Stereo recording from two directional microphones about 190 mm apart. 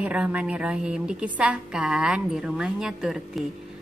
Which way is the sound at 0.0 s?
5° right (ahead or behind).